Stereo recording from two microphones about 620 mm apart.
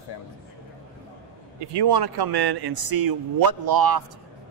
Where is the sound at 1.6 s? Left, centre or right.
Right.